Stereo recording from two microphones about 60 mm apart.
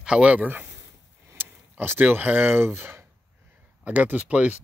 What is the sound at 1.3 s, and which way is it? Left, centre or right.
Speech, right.